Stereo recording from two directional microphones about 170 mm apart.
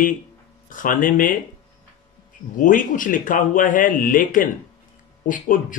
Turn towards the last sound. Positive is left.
turn(degrees=50)  # may be behind; listen again after turning